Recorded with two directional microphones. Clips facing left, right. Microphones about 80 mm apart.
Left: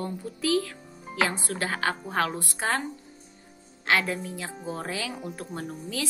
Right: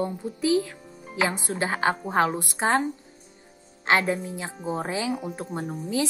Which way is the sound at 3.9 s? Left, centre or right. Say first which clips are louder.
Right 3 dB; right.